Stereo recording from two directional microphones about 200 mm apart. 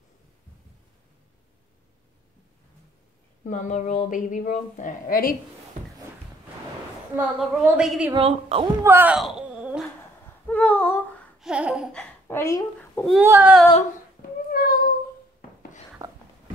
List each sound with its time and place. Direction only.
3.4 s speech: 40° left (ahead or behind)
7.2 s a woman's voice: 5° right (ahead or behind)
8.1 s a woman's voice: 30° right (ahead or behind)
8.8 s wail: 10° right (ahead or behind)
10.5 s female singing: 10° left (ahead or behind)
11.3 s babbling: 5° right (ahead or behind); by 13.0 s 15° left (ahead or behind)
13.2 s a sound: 10° right (ahead or behind)
14.5 s a sound: 45° left (ahead or behind)
16.0 s a sound: 15° right (ahead or behind)